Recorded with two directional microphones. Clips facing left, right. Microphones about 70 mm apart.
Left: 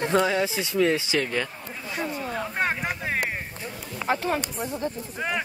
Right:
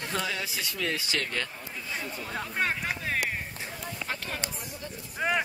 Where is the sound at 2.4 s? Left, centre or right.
Centre.